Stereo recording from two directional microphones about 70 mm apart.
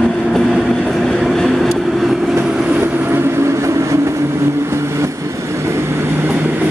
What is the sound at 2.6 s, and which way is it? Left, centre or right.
Train, right.